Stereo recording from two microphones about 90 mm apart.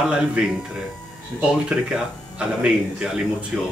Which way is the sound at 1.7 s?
10° right (ahead or behind).